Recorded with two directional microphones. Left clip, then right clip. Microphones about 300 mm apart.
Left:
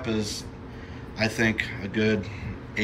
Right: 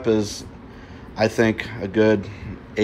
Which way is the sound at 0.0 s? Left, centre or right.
Centre.